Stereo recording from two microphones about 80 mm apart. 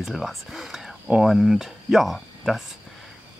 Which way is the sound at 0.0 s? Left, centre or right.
Centre.